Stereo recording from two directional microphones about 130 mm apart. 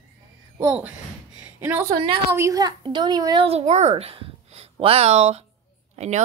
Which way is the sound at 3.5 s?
55° right (ahead or behind).